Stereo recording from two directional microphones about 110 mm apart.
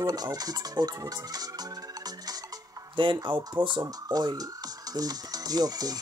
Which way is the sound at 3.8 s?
35° right (ahead or behind).